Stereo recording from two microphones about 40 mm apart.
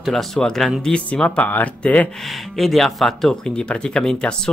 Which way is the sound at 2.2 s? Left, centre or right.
Centre.